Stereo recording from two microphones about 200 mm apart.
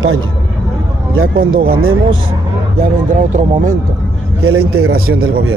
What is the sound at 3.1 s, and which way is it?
Speech, 40° right (ahead or behind).